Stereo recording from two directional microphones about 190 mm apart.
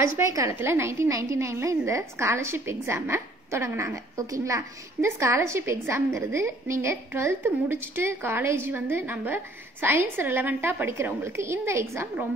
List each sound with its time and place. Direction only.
0.0 s a woman's voice: 15° right (ahead or behind)